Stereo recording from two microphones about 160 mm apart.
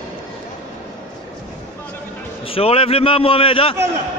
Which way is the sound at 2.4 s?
35° left (ahead or behind).